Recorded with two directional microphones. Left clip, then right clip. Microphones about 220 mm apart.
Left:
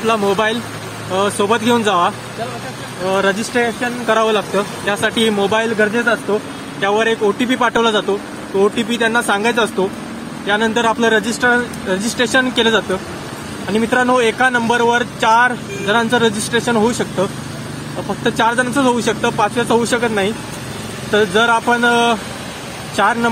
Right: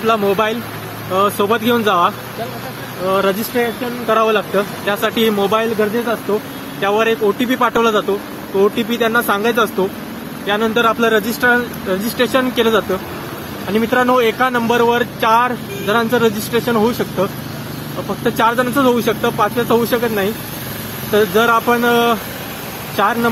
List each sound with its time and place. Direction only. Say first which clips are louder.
0.0 s speech: even; centre (ahead or behind)
6.8 s speech: even; centre (ahead or behind)